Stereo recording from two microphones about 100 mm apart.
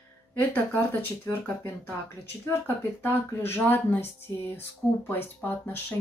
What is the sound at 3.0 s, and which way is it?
Speech, 20° left (ahead or behind).